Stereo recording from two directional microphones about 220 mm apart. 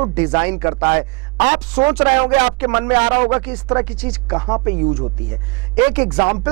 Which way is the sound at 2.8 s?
20° right (ahead or behind).